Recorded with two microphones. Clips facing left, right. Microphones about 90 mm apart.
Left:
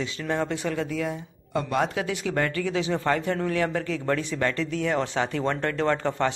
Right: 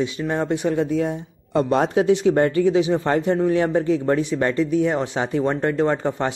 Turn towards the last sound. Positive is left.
turn(degrees=-20)  # may be behind; listen again after turning